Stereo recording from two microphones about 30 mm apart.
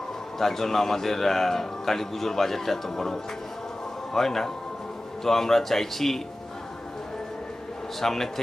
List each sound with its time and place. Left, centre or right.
0.4 s a man's voice: centre
8.0 s a man's voice: centre